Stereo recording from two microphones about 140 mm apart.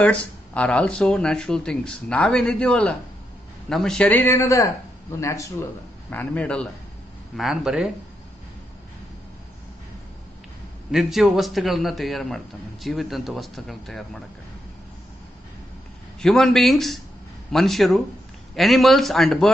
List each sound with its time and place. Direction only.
0.0 s speech: 10° left (ahead or behind)
6.0 s speech: 10° left (ahead or behind)
7.3 s a man's voice: 5° right (ahead or behind)
10.9 s a man's voice: centre (ahead or behind)
16.2 s a man's voice: 5° left (ahead or behind)